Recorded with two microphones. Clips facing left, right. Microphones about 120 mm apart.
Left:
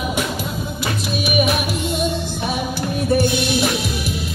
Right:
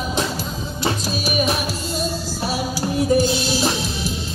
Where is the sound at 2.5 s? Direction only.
55° left (ahead or behind).